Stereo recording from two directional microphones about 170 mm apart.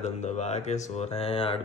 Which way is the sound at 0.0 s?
40° left (ahead or behind).